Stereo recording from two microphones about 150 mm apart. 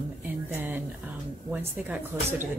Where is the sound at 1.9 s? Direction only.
15° right (ahead or behind).